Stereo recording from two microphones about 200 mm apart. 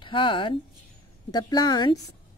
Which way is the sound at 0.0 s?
25° left (ahead or behind).